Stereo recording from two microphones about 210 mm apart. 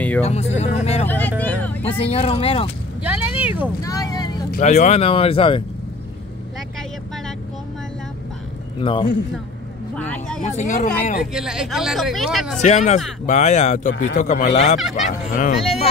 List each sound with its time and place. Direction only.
0.2 s speech: 30° left (ahead or behind)
1.0 s speech: 10° left (ahead or behind)
1.4 s music: 5° left (ahead or behind)
2.0 s speech: 30° left (ahead or behind)
3.0 s speech: 5° right (ahead or behind)
3.8 s speech: 15° left (ahead or behind)
4.5 s speech: 35° left (ahead or behind)
8.7 s speech: 25° left (ahead or behind)
9.9 s vehicle: 5° left (ahead or behind)
10.4 s speech: 35° left (ahead or behind)
11.3 s speech: 5° right (ahead or behind)
12.6 s speech: 35° left (ahead or behind)